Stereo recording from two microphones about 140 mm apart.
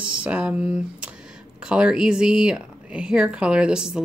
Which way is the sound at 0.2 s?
10° right (ahead or behind).